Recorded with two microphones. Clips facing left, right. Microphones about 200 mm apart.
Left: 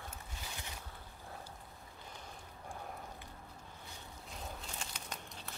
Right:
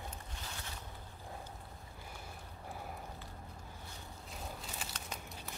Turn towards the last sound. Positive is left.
turn(degrees=10)  # may be behind; listen again after turning